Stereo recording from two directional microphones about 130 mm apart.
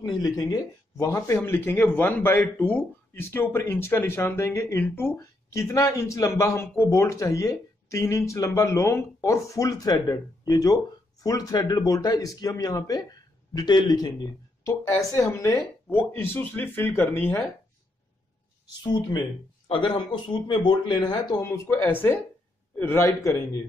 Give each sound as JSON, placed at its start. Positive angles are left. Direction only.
{"t": 0.0, "sound": "speech", "side_deg": 30}
{"t": 19.7, "sound": "speech", "side_deg": 40}
{"t": 21.4, "sound": "speech", "side_deg": 20}